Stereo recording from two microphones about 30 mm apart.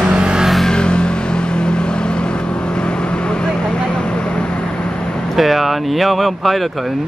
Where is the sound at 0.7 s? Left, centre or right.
Left.